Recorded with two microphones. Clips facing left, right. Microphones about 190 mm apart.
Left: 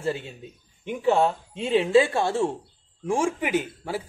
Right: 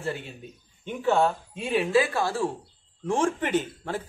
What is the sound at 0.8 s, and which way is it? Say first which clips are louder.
Speech: left 2 dB; 15° left (ahead or behind).